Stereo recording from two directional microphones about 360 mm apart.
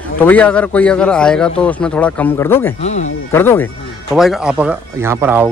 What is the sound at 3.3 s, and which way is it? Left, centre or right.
Speech, centre.